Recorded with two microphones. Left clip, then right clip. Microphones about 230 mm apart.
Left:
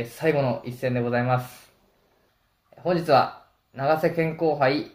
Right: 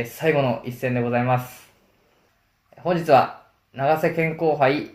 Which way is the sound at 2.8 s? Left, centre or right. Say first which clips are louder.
Right 3 dB; centre.